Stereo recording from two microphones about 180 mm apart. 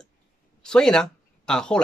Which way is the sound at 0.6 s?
5° left (ahead or behind).